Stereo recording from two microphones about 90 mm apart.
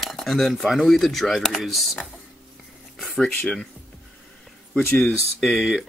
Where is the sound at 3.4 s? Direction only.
10° left (ahead or behind).